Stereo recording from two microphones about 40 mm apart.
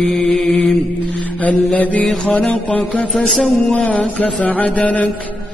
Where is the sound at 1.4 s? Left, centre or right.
Left.